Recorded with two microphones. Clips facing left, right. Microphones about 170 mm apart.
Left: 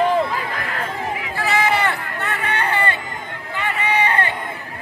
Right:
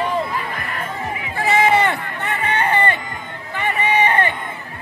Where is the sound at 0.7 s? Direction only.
90° left.